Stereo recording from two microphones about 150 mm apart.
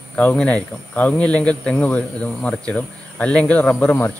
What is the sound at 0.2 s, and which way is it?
Speech, 10° left (ahead or behind).